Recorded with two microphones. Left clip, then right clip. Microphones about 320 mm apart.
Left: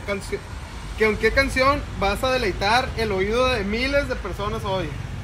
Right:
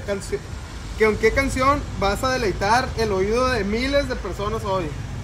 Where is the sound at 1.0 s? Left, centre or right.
Centre.